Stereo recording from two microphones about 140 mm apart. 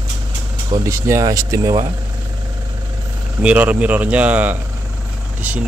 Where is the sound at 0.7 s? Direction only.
20° right (ahead or behind).